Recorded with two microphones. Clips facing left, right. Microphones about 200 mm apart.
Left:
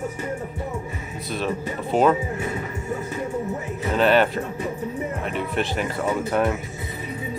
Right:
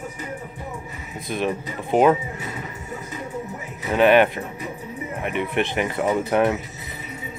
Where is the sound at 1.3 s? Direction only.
15° right (ahead or behind).